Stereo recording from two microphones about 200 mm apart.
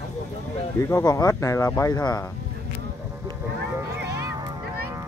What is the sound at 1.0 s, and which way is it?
Speech, 15° left (ahead or behind).